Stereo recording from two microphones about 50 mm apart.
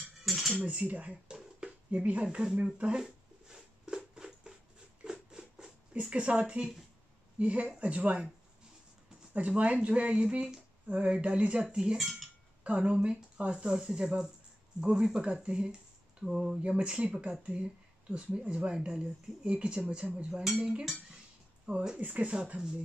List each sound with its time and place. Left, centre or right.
0.2 s dishes: centre
0.7 s speech: right
3.0 s a sound: centre
6.0 s speech: right
9.3 s speech: right
10.9 s speech: right
12.0 s speech: centre
12.6 s speech: right
16.3 s speech: centre
16.6 s speech: right